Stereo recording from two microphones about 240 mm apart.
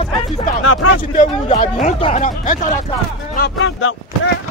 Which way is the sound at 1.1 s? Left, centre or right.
Left.